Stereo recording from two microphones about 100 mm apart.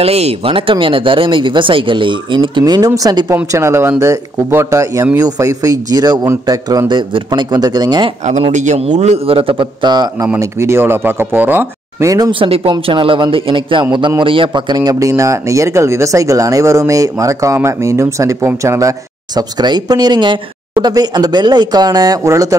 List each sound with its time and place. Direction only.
0.0 s speech: 85° right; by 3.3 s 40° right (ahead or behind)
3.5 s speech: 30° right (ahead or behind); by 8.1 s 45° right (ahead or behind)
8.4 s speech: 90° right; by 10.0 s 50° right (ahead or behind)
10.6 s speech: 25° right (ahead or behind)
12.0 s speech: 35° right (ahead or behind)
12.3 s speech: 60° right (ahead or behind); by 19.4 s 30° right (ahead or behind)
19.6 s speech: 45° right (ahead or behind)